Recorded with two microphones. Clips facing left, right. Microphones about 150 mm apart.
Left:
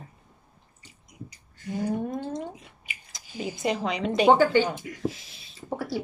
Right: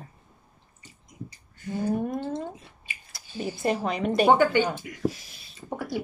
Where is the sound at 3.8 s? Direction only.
50° right (ahead or behind).